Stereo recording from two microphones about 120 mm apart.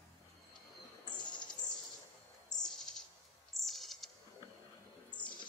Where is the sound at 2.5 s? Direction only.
5° left (ahead or behind).